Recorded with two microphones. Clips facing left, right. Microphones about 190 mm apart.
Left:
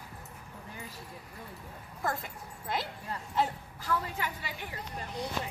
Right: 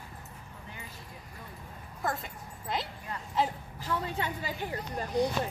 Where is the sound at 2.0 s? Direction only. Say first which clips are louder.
Even; 5° left (ahead or behind).